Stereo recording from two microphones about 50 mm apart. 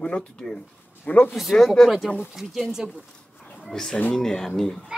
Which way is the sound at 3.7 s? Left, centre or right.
Centre.